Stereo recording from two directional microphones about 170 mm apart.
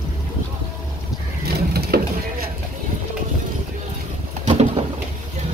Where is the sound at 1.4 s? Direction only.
65° right (ahead or behind).